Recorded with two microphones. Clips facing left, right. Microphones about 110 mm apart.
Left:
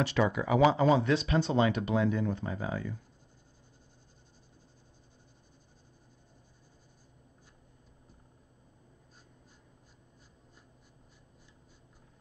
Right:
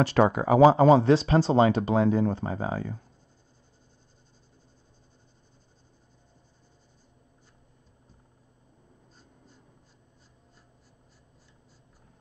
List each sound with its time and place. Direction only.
0.0 s speech: 40° right (ahead or behind)